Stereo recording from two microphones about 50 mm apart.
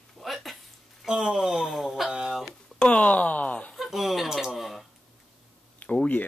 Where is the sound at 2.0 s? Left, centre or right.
Centre.